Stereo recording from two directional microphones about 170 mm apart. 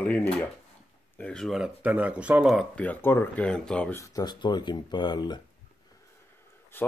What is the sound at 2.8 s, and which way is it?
Speech, 10° left (ahead or behind).